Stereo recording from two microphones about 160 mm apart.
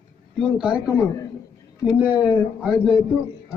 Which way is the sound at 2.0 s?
10° right (ahead or behind).